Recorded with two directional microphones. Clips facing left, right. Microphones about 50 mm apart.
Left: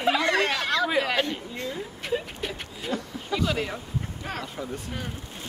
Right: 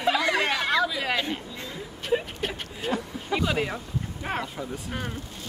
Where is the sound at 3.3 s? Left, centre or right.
Centre.